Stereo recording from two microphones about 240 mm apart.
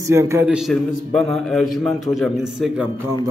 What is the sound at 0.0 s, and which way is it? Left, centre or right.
A man's voice, centre.